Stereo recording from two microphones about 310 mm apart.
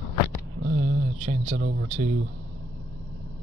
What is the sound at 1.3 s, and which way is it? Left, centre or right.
Speech, right.